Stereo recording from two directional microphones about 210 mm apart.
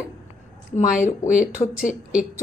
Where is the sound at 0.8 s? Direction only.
35° left (ahead or behind).